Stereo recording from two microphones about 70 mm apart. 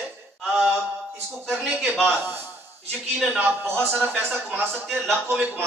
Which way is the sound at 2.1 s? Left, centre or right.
Right.